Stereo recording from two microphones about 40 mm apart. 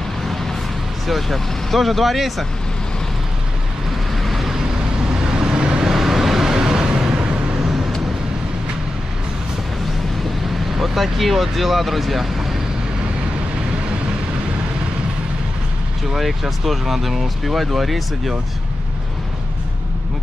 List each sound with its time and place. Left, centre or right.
1.0 s speech: centre
4.2 s vehicle: centre
5.1 s vehicle: right
5.9 s vehicle: centre; by 7.7 s right
10.8 s speech: centre
16.2 s speech: centre